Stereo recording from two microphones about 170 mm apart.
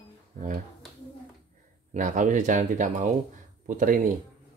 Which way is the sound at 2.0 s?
50° right (ahead or behind).